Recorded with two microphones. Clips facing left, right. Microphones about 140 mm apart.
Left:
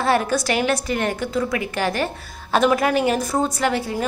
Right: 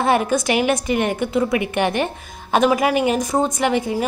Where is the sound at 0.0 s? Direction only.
15° right (ahead or behind).